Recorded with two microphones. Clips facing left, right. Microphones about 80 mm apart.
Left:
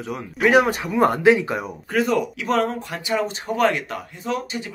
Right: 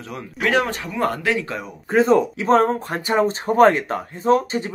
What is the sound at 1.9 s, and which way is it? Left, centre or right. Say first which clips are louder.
Speech: right 5 dB; right.